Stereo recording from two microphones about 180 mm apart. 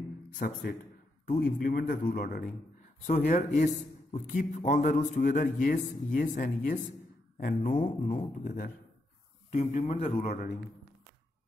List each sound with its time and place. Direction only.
0.4 s a man's voice: 55° left (ahead or behind)
3.3 s a man's voice: 40° left (ahead or behind)
9.5 s a man's voice: 40° left (ahead or behind)